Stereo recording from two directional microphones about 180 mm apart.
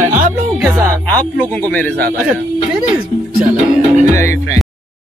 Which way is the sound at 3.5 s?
45° right (ahead or behind).